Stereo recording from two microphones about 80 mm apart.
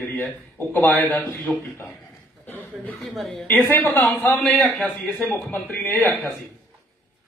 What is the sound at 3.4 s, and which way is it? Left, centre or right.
A man's voice, left.